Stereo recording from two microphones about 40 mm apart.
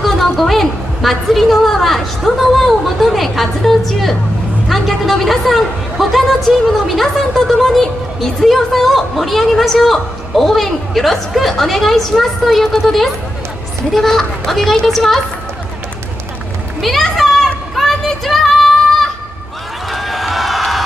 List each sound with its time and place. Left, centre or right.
0.0 s a woman's voice: centre
16.8 s children playing: centre
17.7 s child singing: centre
19.9 s a sound: centre